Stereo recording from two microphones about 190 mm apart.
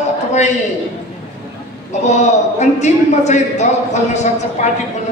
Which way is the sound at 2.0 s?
40° left (ahead or behind).